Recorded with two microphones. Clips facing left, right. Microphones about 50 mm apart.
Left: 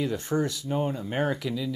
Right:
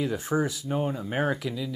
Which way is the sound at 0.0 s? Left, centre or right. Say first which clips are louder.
Even; centre.